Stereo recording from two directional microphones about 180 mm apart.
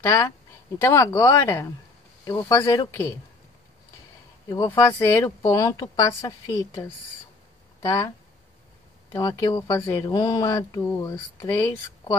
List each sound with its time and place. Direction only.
0.0 s a woman's voice: 15° left (ahead or behind)
4.5 s a woman's voice: 15° left (ahead or behind)
7.8 s speech: 15° left (ahead or behind)
9.1 s a woman's voice: 20° left (ahead or behind)